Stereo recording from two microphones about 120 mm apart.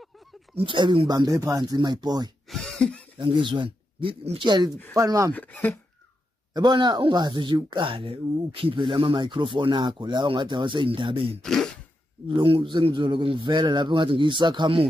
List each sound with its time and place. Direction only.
0.6 s speech: 45° right (ahead or behind)
2.5 s cough: 5° left (ahead or behind)
3.2 s speech: 45° right (ahead or behind)
4.5 s speech: 35° right (ahead or behind)
5.3 s speech: 15° left (ahead or behind)
6.5 s speech: 35° right (ahead or behind)
11.4 s speech: 5° left (ahead or behind)
12.4 s a man's voice: 45° right (ahead or behind)